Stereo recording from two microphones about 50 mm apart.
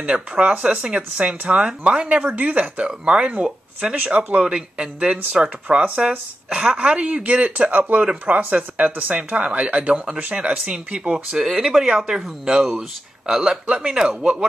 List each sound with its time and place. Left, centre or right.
0.0 s speech: right
2.0 s speech: right
2.9 s speech: centre
3.9 s speech: right
9.5 s speech: right
11.1 s speech: centre